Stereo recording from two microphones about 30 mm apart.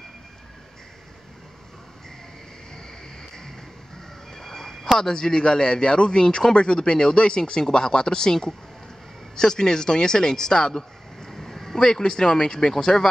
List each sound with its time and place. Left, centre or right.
4.3 s a sound: centre
4.9 s speech: left
11.8 s speech: left